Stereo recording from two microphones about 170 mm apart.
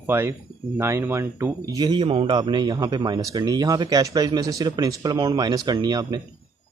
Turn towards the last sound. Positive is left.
turn(degrees=-25)  # may be behind; listen again after turning